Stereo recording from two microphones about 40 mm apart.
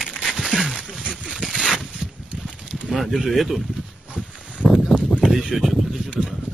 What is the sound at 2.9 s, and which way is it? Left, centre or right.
Speech, centre.